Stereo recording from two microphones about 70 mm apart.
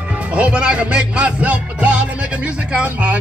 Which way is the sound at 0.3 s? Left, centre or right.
Centre.